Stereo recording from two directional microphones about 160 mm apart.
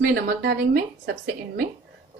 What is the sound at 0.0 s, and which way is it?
A woman's voice, 80° right.